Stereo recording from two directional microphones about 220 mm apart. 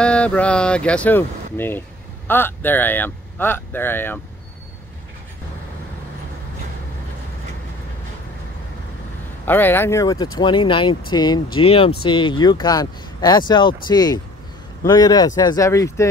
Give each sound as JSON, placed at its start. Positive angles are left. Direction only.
{"t": 0.0, "sound": "speech", "side_deg": 5}
{"t": 9.5, "sound": "speech", "side_deg": 10}